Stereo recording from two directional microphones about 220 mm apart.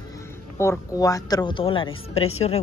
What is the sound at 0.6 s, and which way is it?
A woman's voice, 15° left (ahead or behind).